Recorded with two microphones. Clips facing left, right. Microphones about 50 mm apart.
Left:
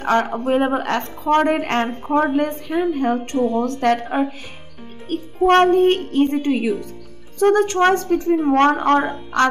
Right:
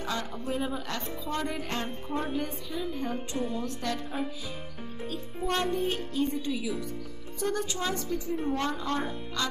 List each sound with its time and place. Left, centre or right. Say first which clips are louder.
0.0 s speech: left 15 dB; left